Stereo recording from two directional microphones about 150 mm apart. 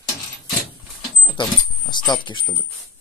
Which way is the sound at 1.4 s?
30° left (ahead or behind).